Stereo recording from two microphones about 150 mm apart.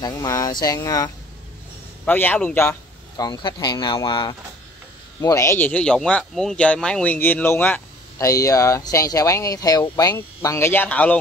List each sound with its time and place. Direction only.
0.0 s speech: 25° left (ahead or behind)
2.0 s speech: 10° left (ahead or behind)
3.2 s speech: 25° left (ahead or behind)
5.2 s speech: 20° left (ahead or behind)